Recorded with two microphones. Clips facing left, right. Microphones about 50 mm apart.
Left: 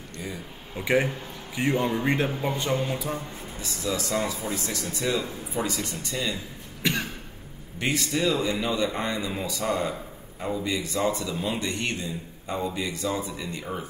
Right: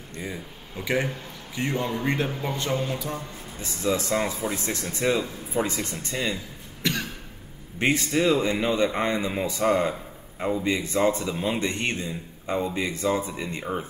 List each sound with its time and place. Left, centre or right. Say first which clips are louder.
0.7 s a man's voice: left 2 dB; centre
3.6 s a man's voice: right 4 dB; right
6.8 s cough: left 1 dB; left
7.8 s a man's voice: right 3 dB; right
11.3 s speech: right 2 dB; centre
11.6 s a man's voice: right 2 dB; right